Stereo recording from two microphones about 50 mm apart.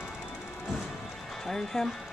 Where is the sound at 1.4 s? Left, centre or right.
Centre.